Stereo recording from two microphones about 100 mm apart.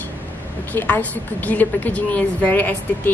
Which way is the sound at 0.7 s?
15° left (ahead or behind).